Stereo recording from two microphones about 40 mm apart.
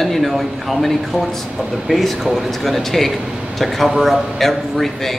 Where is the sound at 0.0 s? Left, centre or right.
Centre.